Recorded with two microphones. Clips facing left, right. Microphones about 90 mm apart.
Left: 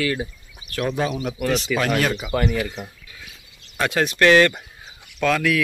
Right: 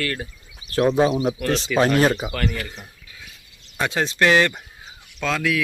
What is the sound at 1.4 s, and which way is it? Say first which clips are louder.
Speech: left 1 dB; 5° left (ahead or behind).